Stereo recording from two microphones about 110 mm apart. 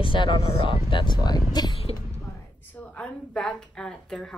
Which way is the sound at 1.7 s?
65° left (ahead or behind).